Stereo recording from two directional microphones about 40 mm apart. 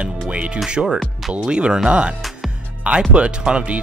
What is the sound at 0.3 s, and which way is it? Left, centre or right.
Music, right.